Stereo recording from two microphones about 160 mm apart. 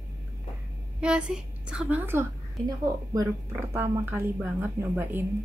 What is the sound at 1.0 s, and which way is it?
Speech, 5° right (ahead or behind).